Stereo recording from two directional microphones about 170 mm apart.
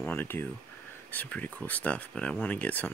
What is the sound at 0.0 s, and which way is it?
Speech, 10° left (ahead or behind).